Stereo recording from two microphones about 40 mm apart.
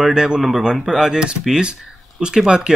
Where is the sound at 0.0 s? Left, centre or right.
Right.